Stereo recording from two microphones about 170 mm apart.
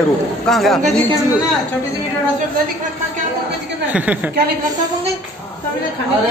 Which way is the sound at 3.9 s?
10° right (ahead or behind).